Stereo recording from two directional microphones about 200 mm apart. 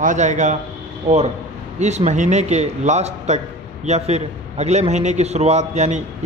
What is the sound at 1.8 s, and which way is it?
A man's voice, 35° right (ahead or behind).